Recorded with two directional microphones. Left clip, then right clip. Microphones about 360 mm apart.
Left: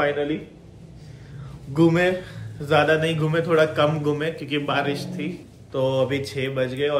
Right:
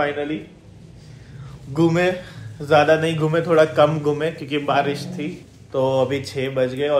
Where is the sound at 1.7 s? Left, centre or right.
Centre.